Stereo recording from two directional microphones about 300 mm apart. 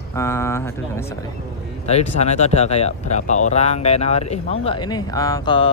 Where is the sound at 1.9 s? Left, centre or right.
Left.